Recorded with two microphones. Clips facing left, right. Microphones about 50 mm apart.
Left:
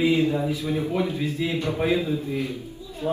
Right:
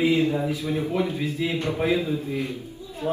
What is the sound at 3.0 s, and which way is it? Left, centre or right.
Speech, centre.